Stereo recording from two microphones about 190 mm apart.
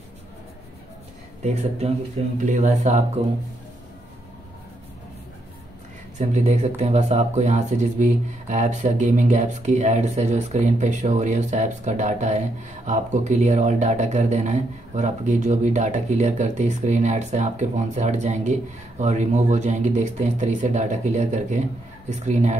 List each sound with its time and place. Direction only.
1.4 s speech: 35° right (ahead or behind)
6.1 s speech: 40° right (ahead or behind)